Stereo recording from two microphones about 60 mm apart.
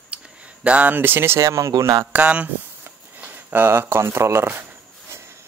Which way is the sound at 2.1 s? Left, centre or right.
Right.